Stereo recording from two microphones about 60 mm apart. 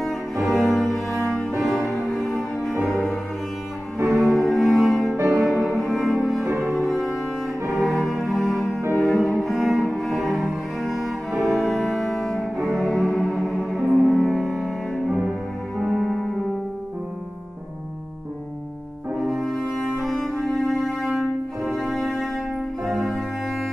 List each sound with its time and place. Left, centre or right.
0.7 s cello: centre
4.0 s cello: right
4.6 s cello: centre
5.0 s music: right
5.4 s cello: centre
6.4 s cello: right
7.7 s cello: centre
12.6 s music: centre
15.8 s music: centre
19.1 s french horn: centre
20.0 s cello: centre
22.8 s music: centre